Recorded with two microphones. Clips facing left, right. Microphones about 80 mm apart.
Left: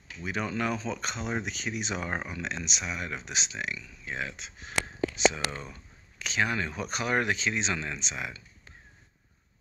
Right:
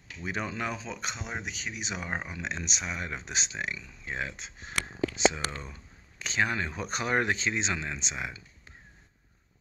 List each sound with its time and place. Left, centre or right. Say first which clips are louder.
0.2 s speech: left 2 dB; right
1.3 s speech: left 4 dB; centre
2.2 s speech: left 1 dB; right
5.6 s a sound: left 1 dB; right
6.2 s speech: even; right